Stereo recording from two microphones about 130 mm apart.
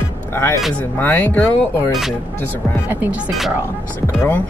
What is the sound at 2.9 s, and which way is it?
Speech, 15° right (ahead or behind).